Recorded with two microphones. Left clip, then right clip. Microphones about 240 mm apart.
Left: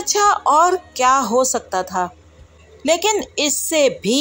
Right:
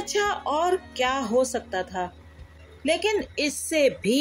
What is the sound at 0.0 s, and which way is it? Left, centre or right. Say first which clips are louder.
Speech: left 10 dB; centre.